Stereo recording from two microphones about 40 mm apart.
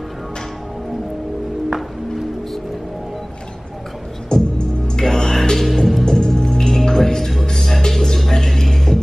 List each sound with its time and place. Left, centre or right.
1.7 s music: centre
4.3 s music: left; by 6.0 s centre
6.0 s music: centre